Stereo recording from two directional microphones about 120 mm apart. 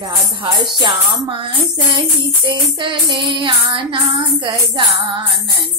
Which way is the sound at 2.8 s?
40° right (ahead or behind).